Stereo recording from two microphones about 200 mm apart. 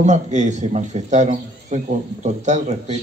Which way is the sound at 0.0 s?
35° right (ahead or behind).